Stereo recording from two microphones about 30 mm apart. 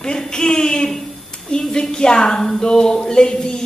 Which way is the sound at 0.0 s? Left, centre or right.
Left.